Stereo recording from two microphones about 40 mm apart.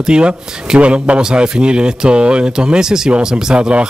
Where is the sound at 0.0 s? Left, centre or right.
Right.